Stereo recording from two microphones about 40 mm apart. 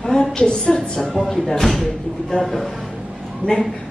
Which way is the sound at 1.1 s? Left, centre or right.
Centre.